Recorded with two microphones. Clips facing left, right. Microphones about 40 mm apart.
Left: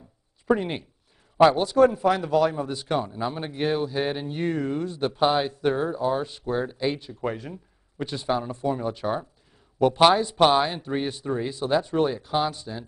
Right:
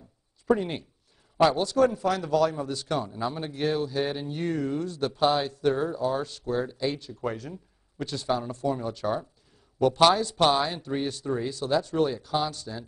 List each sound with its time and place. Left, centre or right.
0.5 s speech: centre